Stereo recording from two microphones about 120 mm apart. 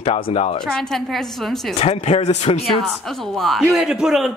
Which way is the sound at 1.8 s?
55° left (ahead or behind).